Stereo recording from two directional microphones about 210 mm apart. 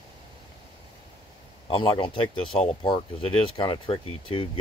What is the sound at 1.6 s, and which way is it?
Speech, 20° left (ahead or behind).